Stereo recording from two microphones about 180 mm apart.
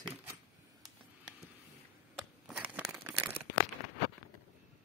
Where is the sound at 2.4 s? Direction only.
5° right (ahead or behind).